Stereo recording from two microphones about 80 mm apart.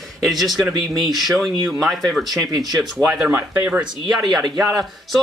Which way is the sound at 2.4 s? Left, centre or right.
Right.